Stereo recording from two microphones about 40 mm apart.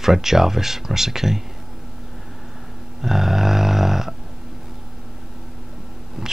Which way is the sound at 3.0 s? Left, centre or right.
Centre.